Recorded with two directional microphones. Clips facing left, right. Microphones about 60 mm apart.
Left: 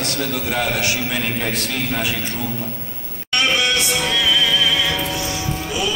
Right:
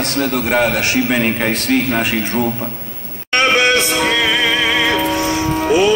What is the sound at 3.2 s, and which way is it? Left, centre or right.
Music, right.